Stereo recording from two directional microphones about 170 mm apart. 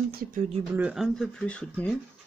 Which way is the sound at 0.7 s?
5° right (ahead or behind).